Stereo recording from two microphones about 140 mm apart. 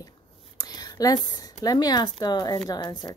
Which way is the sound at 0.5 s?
30° left (ahead or behind).